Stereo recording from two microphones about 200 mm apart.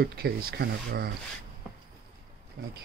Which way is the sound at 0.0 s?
50° right (ahead or behind).